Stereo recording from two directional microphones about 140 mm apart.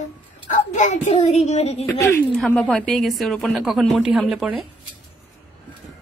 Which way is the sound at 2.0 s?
5° left (ahead or behind).